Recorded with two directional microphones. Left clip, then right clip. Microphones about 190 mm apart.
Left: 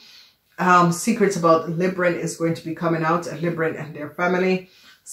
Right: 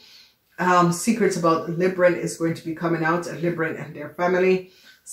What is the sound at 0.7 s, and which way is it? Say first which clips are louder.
Speech: left 2 dB; 35° left (ahead or behind).